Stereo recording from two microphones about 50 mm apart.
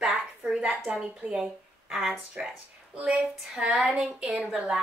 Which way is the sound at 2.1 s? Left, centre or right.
Centre.